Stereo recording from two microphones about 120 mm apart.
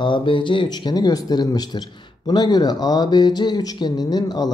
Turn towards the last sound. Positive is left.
turn(degrees=35)  # may be behind; listen again after turning